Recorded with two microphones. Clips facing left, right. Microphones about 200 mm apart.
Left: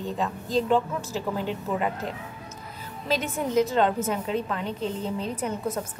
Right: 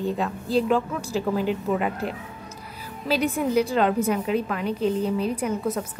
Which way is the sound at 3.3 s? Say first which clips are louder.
Right 2 dB; 10° right (ahead or behind).